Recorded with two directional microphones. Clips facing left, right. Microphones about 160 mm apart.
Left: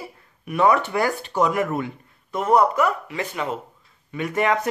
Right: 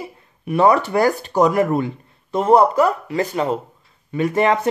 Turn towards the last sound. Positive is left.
turn(degrees=-30)  # may be behind; listen again after turning